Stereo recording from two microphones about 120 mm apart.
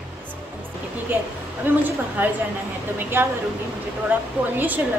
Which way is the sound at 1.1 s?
15° right (ahead or behind).